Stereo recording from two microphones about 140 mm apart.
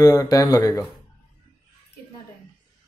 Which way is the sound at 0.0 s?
25° left (ahead or behind).